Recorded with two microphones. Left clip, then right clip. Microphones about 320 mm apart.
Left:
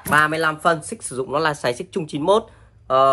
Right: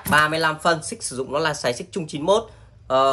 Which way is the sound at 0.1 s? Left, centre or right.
Centre.